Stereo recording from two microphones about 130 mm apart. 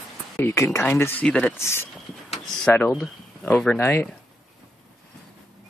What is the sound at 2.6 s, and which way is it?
Speech, 5° left (ahead or behind).